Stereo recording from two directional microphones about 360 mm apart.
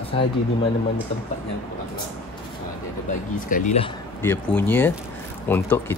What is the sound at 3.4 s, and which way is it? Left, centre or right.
Speech, left.